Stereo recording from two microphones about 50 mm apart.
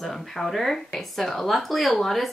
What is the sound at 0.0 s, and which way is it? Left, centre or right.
Speech, centre.